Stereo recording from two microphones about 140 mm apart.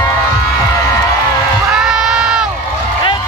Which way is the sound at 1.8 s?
5° right (ahead or behind).